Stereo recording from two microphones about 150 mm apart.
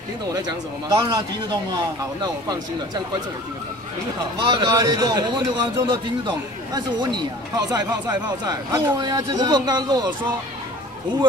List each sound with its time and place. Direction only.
0.3 s a man's voice: 25° right (ahead or behind)
4.2 s a man's voice: 30° right (ahead or behind)